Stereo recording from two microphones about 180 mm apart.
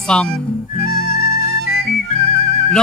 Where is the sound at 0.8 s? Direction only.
55° left (ahead or behind).